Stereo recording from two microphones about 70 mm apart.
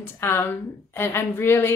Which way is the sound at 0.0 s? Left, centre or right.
Left.